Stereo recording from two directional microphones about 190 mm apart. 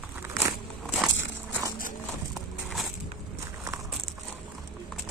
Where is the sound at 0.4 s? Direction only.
5° right (ahead or behind).